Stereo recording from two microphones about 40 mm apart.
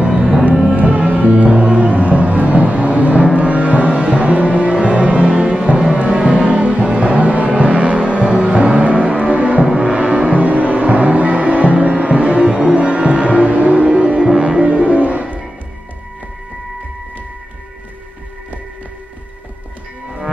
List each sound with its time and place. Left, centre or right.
0.0 s music: right
9.8 s music: right
10.3 s music: right
14.6 s music: right